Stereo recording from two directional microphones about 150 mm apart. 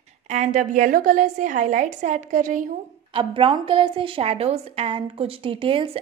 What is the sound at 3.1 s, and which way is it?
A woman's voice, 35° right (ahead or behind).